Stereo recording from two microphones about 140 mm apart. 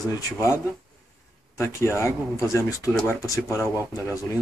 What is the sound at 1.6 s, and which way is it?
Speech, 20° left (ahead or behind).